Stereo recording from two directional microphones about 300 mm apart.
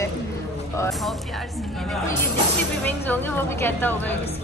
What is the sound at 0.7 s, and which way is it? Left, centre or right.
Speech, centre.